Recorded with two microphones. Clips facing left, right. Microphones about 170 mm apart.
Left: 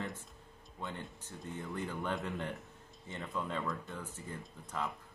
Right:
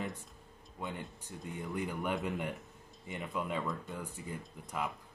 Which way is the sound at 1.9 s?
10° right (ahead or behind).